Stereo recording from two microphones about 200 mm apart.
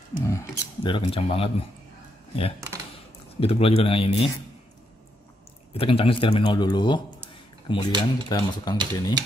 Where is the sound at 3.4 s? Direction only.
30° left (ahead or behind).